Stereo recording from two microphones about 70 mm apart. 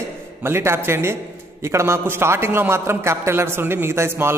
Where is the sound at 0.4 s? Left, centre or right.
Right.